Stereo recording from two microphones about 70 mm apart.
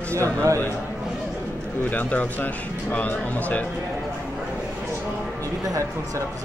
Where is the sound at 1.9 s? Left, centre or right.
Left.